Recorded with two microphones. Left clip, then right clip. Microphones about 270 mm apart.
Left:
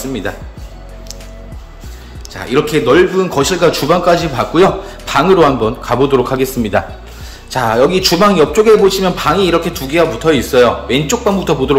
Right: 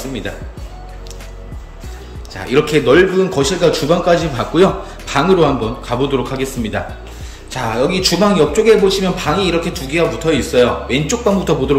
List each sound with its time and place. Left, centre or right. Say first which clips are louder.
2.3 s a man's voice: even; centre